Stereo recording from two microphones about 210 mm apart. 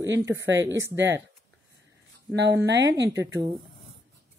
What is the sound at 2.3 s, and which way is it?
Speech, 55° right (ahead or behind).